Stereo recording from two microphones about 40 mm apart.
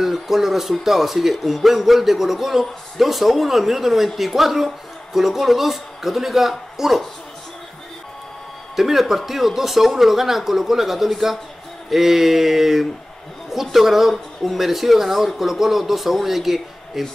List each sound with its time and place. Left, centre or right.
0.0 s speech: centre
8.7 s speech: centre